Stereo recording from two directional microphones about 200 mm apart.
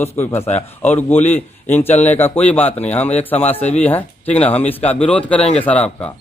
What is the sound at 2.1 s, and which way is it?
Speech, 10° left (ahead or behind).